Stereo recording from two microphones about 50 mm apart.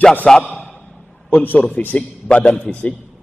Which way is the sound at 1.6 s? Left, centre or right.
Left.